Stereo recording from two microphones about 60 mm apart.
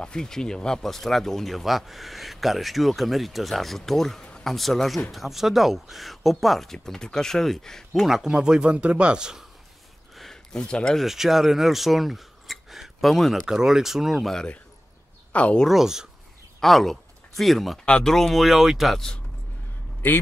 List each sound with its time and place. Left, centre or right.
0.0 s speech: centre
10.1 s a sound: centre
11.1 s speech: centre
13.5 s speech: centre
15.3 s speech: left
15.7 s speech: centre
16.5 s speech: centre